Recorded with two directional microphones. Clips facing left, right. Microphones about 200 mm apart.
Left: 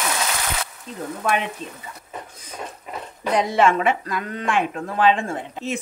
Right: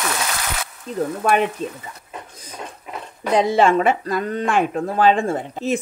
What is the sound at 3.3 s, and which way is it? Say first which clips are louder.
Speech: right 3 dB; 30° right (ahead or behind).